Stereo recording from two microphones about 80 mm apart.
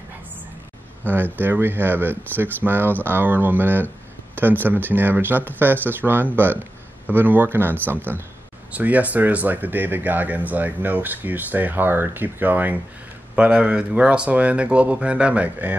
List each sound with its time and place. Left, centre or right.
1.0 s speech: right